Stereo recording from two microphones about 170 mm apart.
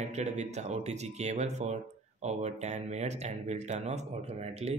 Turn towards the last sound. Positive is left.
turn(degrees=-40)  # may be behind; listen again after turning